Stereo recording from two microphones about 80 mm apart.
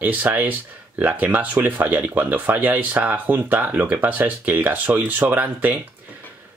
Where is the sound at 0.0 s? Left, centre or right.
Right.